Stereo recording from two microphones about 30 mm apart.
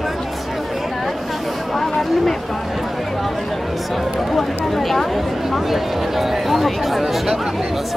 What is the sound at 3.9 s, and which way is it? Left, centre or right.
Chatter, centre.